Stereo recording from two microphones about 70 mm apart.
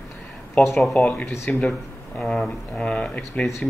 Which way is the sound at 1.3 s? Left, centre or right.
Left.